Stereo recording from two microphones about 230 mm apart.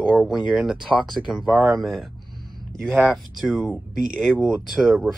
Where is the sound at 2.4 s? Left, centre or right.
Centre.